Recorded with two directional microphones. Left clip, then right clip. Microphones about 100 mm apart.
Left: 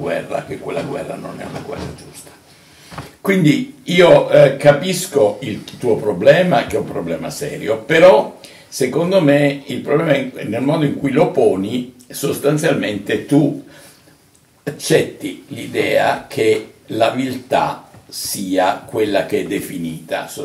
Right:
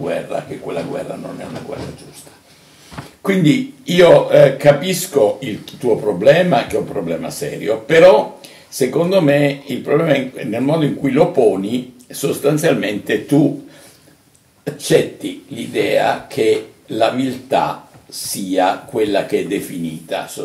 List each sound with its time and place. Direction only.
0.0 s speech: 15° right (ahead or behind)
3.2 s speech: 15° right (ahead or behind)
14.6 s speech: 15° right (ahead or behind)